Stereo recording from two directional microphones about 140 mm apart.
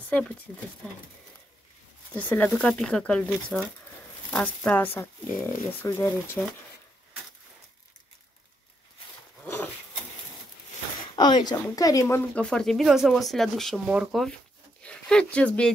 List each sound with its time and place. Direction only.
2.1 s speech: 10° left (ahead or behind)
11.1 s speech: 30° left (ahead or behind)
12.4 s speech: 5° left (ahead or behind)
14.8 s speech: 5° left (ahead or behind)